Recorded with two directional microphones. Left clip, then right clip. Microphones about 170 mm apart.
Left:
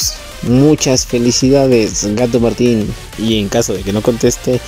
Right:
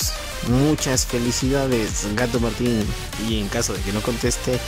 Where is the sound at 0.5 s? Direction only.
10° left (ahead or behind).